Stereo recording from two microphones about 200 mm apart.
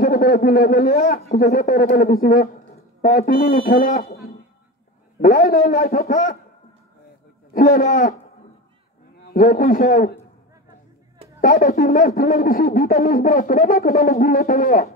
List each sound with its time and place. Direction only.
0.0 s a man's voice: 45° left (ahead or behind)
7.5 s a man's voice: 45° left (ahead or behind)
9.3 s speech: 45° left (ahead or behind)
11.4 s speech: 45° left (ahead or behind)